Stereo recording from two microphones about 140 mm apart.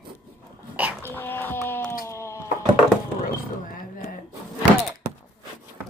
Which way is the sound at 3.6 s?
80° left.